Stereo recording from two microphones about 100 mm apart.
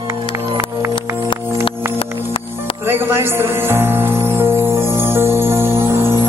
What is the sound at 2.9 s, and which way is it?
Music, 25° right (ahead or behind).